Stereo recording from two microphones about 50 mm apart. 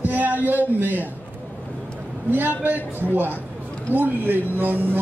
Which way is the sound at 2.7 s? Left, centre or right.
Right.